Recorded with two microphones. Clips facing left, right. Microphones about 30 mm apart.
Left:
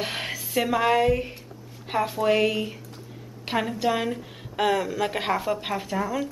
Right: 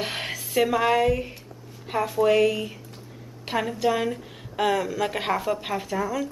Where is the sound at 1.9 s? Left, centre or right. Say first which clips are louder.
Right 1 dB; centre.